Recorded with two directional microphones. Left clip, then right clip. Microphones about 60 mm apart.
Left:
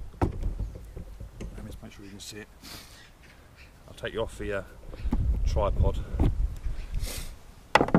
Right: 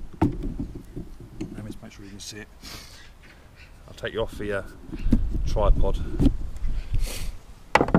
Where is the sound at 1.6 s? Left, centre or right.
Right.